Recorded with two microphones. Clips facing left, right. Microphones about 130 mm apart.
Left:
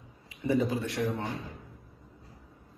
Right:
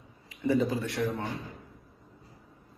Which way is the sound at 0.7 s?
25° left (ahead or behind).